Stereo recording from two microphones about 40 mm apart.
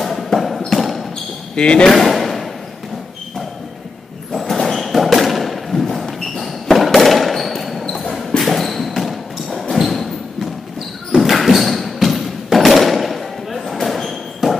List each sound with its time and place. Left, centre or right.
0.0 s music: centre
0.7 s a sound: centre
1.5 s speech: left
1.9 s speech: centre
4.3 s thump: centre
8.3 s a sound: centre
11.3 s thump: centre